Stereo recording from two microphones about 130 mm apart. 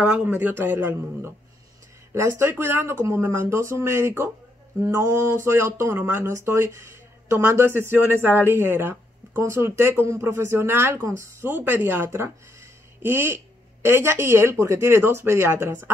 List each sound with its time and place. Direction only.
0.0 s a man's voice: 15° right (ahead or behind)